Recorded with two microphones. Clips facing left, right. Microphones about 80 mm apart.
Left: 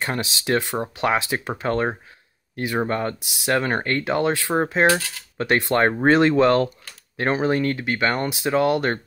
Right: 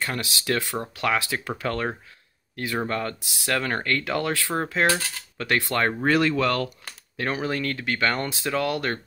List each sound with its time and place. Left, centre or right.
0.0 s speech: left